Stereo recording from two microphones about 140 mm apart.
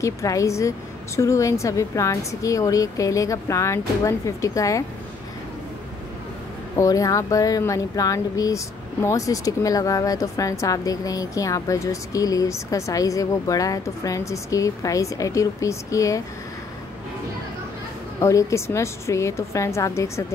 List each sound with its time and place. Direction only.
0.0 s speech: 20° left (ahead or behind)
6.8 s speech: 25° left (ahead or behind)
18.2 s speech: 20° left (ahead or behind)